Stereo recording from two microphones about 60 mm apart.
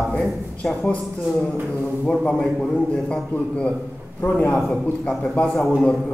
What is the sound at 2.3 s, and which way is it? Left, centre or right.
Mantra, centre.